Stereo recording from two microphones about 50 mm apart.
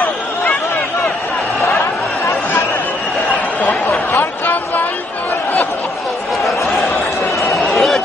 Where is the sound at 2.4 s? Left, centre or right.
Left.